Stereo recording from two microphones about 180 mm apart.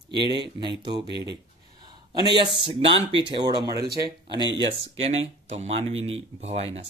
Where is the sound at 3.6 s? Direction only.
20° right (ahead or behind).